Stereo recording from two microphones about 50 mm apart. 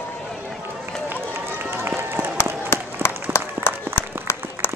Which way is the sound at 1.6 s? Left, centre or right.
Right.